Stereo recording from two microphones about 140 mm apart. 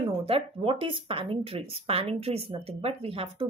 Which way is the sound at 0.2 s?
40° right (ahead or behind).